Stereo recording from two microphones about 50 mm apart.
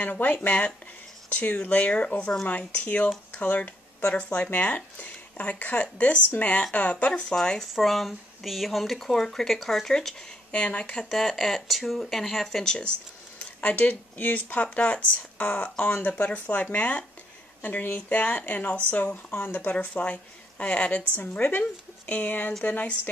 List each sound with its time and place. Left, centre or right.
0.0 s speech: left
7.7 s speech: centre
10.5 s speech: left
11.1 s speech: centre
13.6 s speech: left
17.6 s speech: left